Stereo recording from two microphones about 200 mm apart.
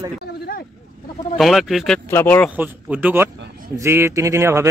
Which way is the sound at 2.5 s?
10° right (ahead or behind).